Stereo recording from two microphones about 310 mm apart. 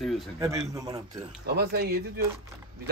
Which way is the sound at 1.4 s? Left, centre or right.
Right.